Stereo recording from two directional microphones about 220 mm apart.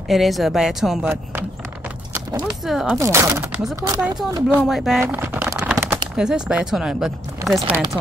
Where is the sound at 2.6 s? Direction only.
Centre (ahead or behind).